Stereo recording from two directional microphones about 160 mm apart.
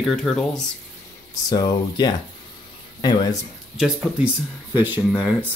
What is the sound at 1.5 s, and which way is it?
Speech, 25° left (ahead or behind).